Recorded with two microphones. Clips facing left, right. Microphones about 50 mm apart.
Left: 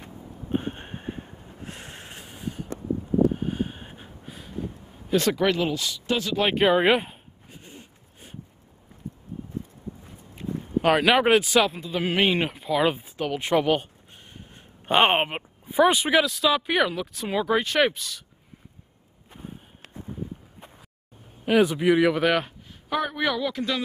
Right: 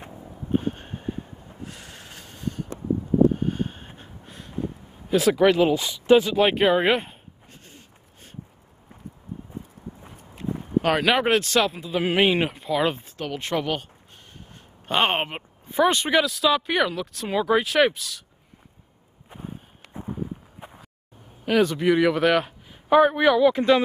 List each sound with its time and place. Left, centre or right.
0.5 s a sound: left
1.6 s vehicle: left
2.2 s a sound: centre
5.1 s speech: centre
5.8 s speech: centre
6.3 s a sound: centre
10.6 s speech: centre
14.3 s a sound: centre
15.1 s speech: centre
19.9 s walk: right
21.5 s speech: centre
22.8 s a man's voice: centre
23.5 s speech: right